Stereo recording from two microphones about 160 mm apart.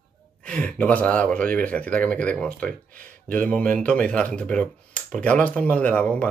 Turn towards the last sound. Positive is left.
turn(degrees=5)  # may be behind; listen again after turning